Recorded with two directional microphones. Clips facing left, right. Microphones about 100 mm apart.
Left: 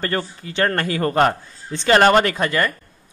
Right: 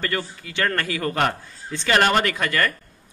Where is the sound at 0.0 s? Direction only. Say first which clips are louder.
Left 3 dB; 35° left (ahead or behind).